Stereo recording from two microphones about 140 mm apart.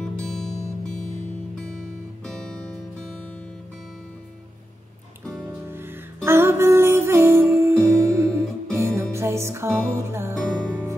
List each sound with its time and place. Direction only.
2.2 s music: 5° left (ahead or behind)
5.7 s music: 15° right (ahead or behind)
9.7 s music: 10° left (ahead or behind)
10.5 s music: 10° right (ahead or behind)